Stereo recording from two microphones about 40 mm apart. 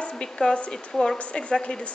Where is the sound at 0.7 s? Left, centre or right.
Centre.